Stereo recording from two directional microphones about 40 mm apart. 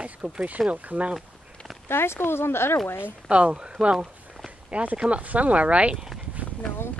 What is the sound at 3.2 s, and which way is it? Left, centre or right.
Speech, right.